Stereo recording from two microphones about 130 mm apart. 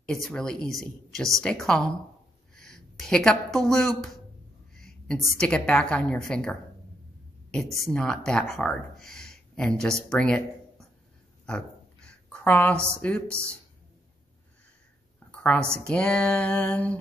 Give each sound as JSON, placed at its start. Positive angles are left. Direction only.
{"t": 0.0, "sound": "a woman's voice", "side_deg": 5}
{"t": 2.5, "sound": "a sound", "side_deg": 5}
{"t": 3.5, "sound": "a woman's voice", "side_deg": 0}
{"t": 7.5, "sound": "a woman's voice", "side_deg": 0}
{"t": 11.4, "sound": "a sound", "side_deg": 5}
{"t": 12.7, "sound": "speech", "side_deg": -20}
{"t": 13.0, "sound": "a woman's voice", "side_deg": 10}
{"t": 15.4, "sound": "a woman's voice", "side_deg": 10}